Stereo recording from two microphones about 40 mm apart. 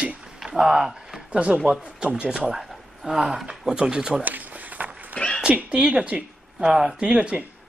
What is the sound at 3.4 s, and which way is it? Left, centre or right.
Speech, centre.